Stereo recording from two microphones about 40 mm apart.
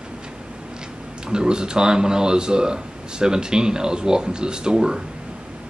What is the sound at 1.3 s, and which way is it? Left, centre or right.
Speech, right.